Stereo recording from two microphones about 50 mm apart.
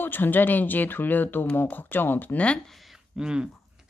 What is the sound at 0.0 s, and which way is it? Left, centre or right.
Speech, left.